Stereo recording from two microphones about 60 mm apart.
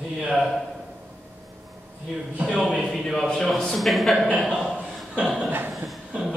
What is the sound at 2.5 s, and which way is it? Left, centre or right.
Speech, centre.